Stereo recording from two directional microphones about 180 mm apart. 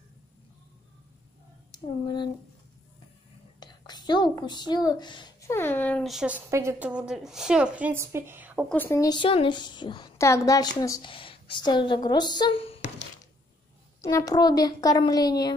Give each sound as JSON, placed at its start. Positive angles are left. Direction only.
{"t": 1.7, "sound": "speech", "side_deg": 25}
{"t": 3.5, "sound": "speech", "side_deg": 25}
{"t": 5.6, "sound": "speech", "side_deg": 10}
{"t": 8.6, "sound": "a woman's voice", "side_deg": 10}
{"t": 14.0, "sound": "a woman's voice", "side_deg": 20}